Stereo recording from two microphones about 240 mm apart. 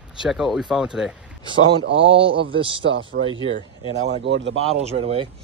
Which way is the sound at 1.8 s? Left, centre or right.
Right.